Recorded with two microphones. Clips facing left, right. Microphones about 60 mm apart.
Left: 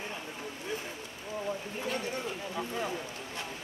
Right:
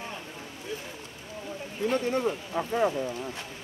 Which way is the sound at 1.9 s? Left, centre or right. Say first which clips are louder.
Right 9 dB; right.